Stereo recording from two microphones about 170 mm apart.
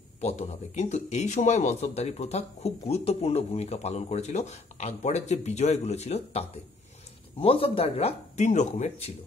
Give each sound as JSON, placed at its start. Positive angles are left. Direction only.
{"t": 0.2, "sound": "speech", "side_deg": 40}